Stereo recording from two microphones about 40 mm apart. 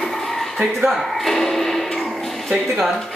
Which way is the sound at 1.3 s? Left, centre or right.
Centre.